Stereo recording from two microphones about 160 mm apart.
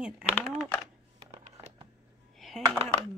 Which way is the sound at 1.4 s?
45° right (ahead or behind).